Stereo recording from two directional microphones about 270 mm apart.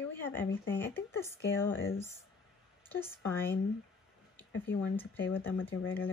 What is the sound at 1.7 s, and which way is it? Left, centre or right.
Speech, left.